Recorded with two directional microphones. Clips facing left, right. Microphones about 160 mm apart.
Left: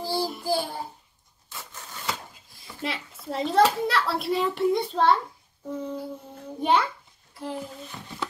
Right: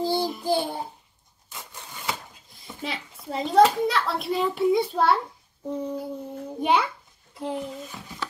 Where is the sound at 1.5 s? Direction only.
15° right (ahead or behind).